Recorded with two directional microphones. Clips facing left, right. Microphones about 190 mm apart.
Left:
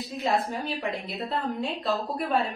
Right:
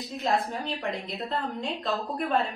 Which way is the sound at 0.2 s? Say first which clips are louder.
Left 1 dB; 5° left (ahead or behind).